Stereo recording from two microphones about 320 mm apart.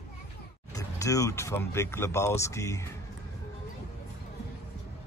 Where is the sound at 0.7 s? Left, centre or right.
Centre.